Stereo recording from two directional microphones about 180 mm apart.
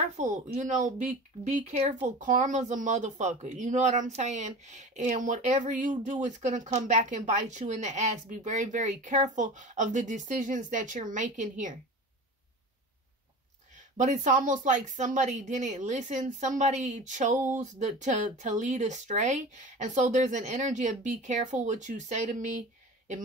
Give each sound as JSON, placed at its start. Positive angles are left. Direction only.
{"t": 0.2, "sound": "speech", "side_deg": -45}
{"t": 13.7, "sound": "speech", "side_deg": -45}